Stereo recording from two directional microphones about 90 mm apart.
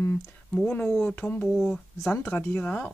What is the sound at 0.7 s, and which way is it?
Speech, 20° left (ahead or behind).